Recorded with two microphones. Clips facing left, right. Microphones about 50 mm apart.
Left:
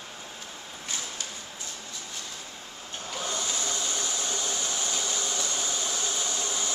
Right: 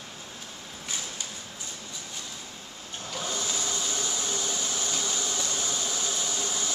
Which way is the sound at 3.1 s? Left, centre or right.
Centre.